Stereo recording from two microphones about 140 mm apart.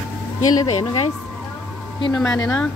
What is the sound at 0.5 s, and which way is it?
Speech, 40° left (ahead or behind).